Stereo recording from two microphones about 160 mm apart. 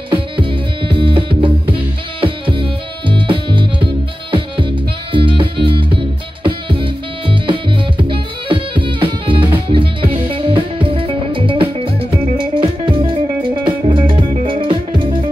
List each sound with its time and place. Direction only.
0.1 s music: 30° right (ahead or behind)